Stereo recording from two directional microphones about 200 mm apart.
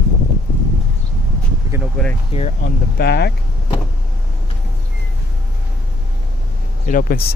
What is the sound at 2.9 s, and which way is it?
Speech, 55° left (ahead or behind).